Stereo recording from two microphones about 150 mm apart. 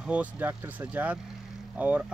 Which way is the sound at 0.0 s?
10° right (ahead or behind).